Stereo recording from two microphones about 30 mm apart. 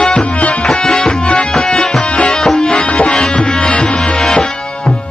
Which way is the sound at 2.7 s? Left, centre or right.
Left.